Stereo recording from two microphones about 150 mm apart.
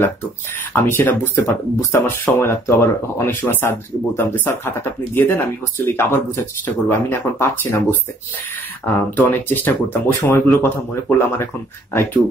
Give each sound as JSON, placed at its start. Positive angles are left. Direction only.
{"t": 0.8, "sound": "speech", "side_deg": 15}